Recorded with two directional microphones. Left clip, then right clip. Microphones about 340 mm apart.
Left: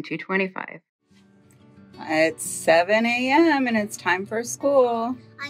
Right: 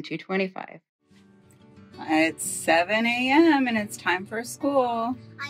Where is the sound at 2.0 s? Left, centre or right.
Centre.